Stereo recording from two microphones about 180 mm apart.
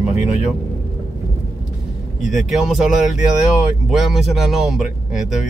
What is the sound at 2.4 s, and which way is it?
Speech, centre (ahead or behind).